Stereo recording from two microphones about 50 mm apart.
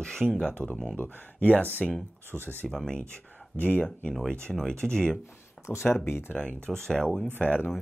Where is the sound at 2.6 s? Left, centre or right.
Centre.